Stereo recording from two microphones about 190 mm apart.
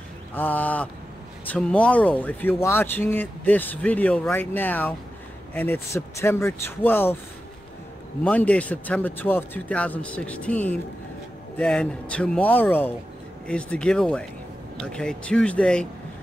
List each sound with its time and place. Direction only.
0.3 s speech: 10° left (ahead or behind)
8.2 s speech: 5° left (ahead or behind)